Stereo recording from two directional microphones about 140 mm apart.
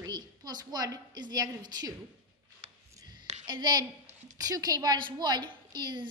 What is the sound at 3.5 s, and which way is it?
A woman's voice, 30° right (ahead or behind).